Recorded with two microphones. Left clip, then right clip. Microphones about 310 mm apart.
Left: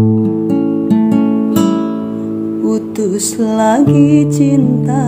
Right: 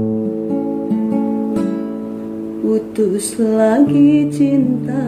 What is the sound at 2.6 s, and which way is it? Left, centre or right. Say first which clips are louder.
Music: right 2 dB; centre.